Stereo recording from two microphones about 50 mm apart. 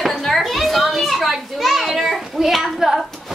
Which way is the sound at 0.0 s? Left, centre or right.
Centre.